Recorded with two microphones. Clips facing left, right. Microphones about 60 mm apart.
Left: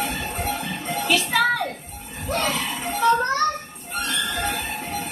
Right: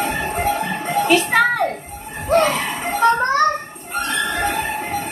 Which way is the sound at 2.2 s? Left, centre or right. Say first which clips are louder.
Right 8 dB; right.